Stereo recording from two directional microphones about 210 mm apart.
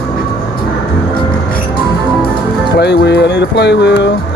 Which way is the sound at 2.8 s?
55° left (ahead or behind).